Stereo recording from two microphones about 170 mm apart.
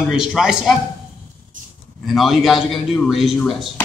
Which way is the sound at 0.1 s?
5° right (ahead or behind).